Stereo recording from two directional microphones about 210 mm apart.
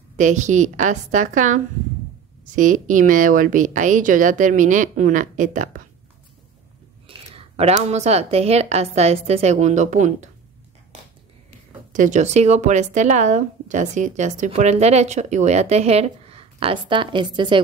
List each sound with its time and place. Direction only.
0.2 s speech: 35° right (ahead or behind)
7.1 s speech: 30° right (ahead or behind)
11.9 s speech: 35° right (ahead or behind); by 17.6 s 20° right (ahead or behind)